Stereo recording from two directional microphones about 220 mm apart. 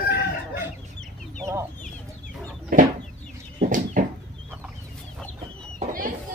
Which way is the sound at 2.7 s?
35° right (ahead or behind).